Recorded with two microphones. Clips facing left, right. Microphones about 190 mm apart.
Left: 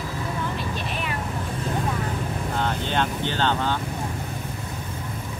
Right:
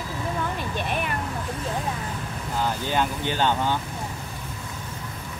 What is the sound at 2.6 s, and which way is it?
Speech, 5° right (ahead or behind).